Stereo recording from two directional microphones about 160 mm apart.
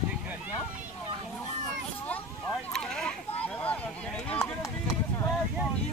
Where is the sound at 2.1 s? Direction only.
5° left (ahead or behind).